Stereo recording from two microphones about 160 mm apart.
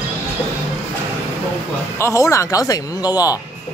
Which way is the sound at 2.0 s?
20° left (ahead or behind).